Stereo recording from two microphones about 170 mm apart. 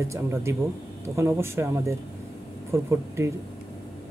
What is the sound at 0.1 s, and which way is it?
Speech, 15° right (ahead or behind).